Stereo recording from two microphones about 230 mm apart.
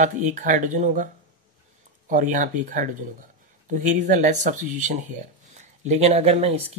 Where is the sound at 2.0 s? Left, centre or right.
Right.